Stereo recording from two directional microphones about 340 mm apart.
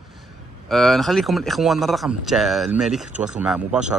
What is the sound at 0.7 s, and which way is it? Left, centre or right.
Speech, centre.